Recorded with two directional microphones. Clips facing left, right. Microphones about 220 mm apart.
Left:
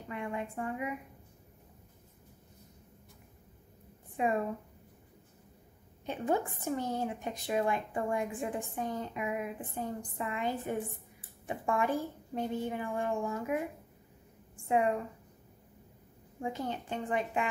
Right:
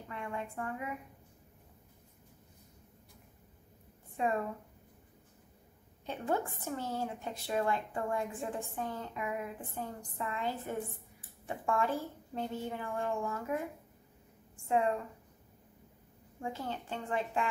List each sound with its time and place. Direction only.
0.1 s speech: 15° left (ahead or behind)
4.2 s speech: 15° left (ahead or behind)
6.0 s speech: 15° left (ahead or behind)
14.7 s speech: 15° left (ahead or behind)
16.3 s speech: 15° left (ahead or behind)